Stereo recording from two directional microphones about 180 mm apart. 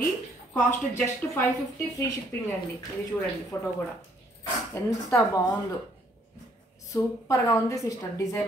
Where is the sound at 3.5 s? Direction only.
15° left (ahead or behind).